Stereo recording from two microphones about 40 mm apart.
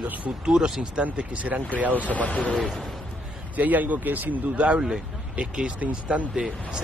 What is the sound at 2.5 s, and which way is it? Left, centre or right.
Speech, centre.